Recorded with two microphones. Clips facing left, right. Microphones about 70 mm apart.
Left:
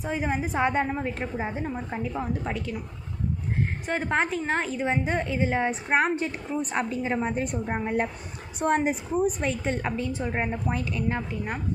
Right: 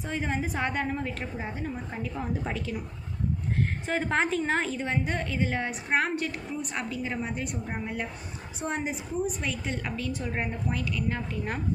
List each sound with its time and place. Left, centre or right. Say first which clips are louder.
0.0 s a woman's voice: left 3 dB; centre
2.4 s a woman's voice: left 2 dB; centre
3.8 s a woman's voice: left 1 dB; centre
4.7 s a woman's voice: left 4 dB; centre; by 8.1 s left
8.5 s a woman's voice: left 8 dB; left
9.4 s a woman's voice: left 5 dB; left